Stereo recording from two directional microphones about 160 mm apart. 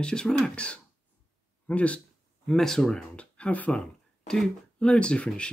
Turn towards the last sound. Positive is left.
turn(degrees=5)  # may be behind; listen again after turning